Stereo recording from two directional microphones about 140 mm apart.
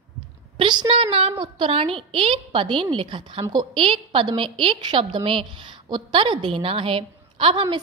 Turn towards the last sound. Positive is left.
turn(degrees=-35)  # may be behind; listen again after turning